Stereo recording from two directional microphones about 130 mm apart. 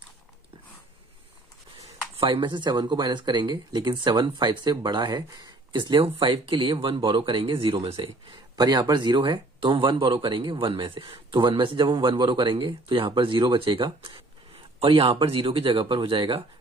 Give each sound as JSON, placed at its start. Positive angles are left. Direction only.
{"t": 2.1, "sound": "speech", "side_deg": -40}